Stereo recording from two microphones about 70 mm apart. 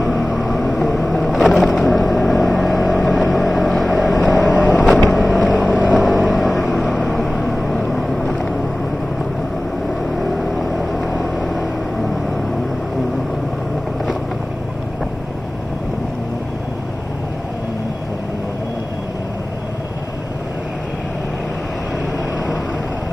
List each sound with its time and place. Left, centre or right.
0.0 s vehicle: centre
4.5 s vehicle: centre
5.1 s vehicle: centre
5.5 s boat: centre
6.0 s vehicle: centre
10.1 s vehicle: centre